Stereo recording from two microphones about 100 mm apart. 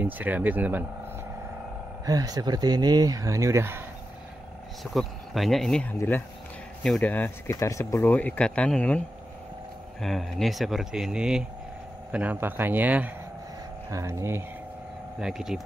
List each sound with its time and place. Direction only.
0.0 s speech: 15° right (ahead or behind)
2.0 s speech: 40° right (ahead or behind)
4.9 s speech: centre (ahead or behind)
5.9 s speech: 20° left (ahead or behind)
6.8 s speech: 10° left (ahead or behind)
7.5 s speech: 30° left (ahead or behind)
8.0 s speech: 15° left (ahead or behind)
10.0 s speech: centre (ahead or behind); by 13.1 s 15° right (ahead or behind)
13.8 s speech: 30° right (ahead or behind)
15.1 s speech: 5° right (ahead or behind)